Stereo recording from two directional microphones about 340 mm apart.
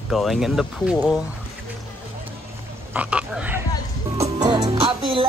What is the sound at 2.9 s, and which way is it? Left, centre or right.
Frog, centre.